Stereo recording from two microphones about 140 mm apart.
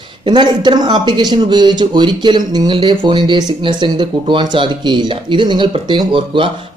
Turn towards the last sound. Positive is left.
turn(degrees=-40)  # may be behind; listen again after turning